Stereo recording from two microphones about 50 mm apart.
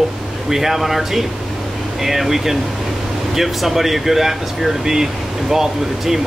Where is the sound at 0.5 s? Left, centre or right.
Centre.